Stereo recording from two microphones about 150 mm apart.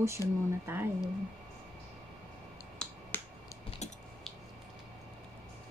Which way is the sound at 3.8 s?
50° left (ahead or behind).